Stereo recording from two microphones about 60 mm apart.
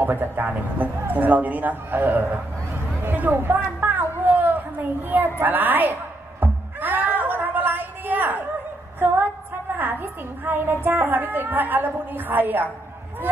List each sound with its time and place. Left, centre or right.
0.0 s a woman's voice: right
4.1 s a sound: right
5.4 s a woman's voice: right
6.4 s music: right
9.0 s a woman's voice: right